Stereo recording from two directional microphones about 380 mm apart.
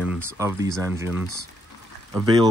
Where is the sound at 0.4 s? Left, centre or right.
Centre.